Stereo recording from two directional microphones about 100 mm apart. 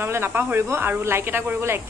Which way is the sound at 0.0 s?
25° right (ahead or behind).